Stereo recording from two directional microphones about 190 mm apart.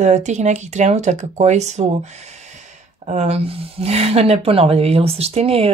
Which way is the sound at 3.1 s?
35° right (ahead or behind).